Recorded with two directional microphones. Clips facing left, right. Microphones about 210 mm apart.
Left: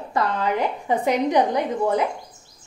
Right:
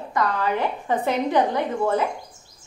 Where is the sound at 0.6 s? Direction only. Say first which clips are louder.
Left 1 dB; 15° left (ahead or behind).